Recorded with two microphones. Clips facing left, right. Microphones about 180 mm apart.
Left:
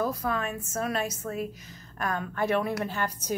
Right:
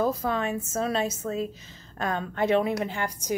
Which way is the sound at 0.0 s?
25° right (ahead or behind).